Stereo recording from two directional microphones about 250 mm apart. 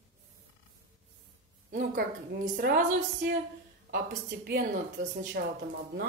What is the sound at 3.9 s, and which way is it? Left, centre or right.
Speech, right.